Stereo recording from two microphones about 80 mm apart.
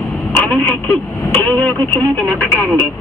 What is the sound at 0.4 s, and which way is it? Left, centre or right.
Speech, centre.